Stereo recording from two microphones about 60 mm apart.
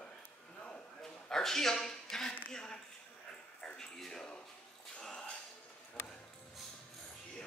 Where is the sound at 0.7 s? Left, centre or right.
Centre.